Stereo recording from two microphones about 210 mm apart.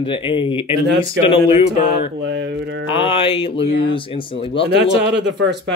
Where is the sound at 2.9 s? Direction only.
25° left (ahead or behind).